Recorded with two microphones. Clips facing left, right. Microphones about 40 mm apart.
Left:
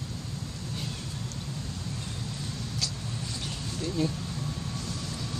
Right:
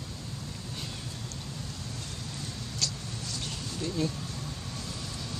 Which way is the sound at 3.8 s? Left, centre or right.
Centre.